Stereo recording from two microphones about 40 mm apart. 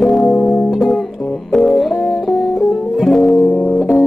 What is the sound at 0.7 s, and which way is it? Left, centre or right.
Music, centre.